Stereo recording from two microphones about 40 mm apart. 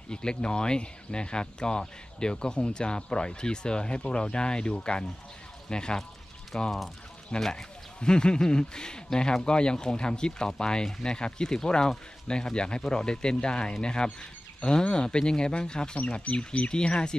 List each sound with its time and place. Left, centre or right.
0.1 s speech: left